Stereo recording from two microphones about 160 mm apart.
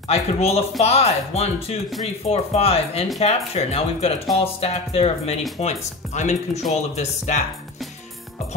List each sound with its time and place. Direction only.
0.1 s speech: 40° left (ahead or behind)